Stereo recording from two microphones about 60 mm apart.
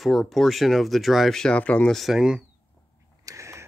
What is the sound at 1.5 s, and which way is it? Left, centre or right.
Speech, left.